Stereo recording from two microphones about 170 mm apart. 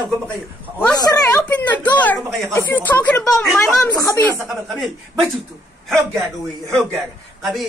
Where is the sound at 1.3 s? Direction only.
10° left (ahead or behind).